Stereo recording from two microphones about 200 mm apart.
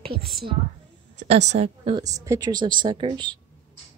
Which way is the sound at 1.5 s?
30° right (ahead or behind).